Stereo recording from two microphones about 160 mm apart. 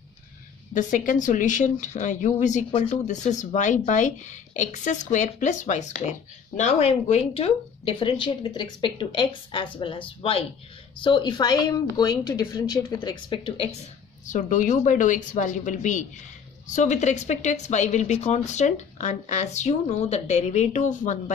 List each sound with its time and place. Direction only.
0.7 s speech: 55° left (ahead or behind)
2.7 s a woman's voice: 35° left (ahead or behind)
3.1 s a woman's voice: 50° left (ahead or behind); by 13.7 s 30° left (ahead or behind)
14.2 s speech: 55° left (ahead or behind)